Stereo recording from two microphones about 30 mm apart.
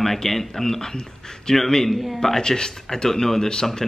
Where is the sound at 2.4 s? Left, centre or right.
Left.